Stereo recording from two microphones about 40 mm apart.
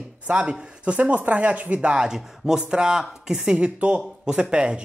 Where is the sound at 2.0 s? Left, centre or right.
Centre.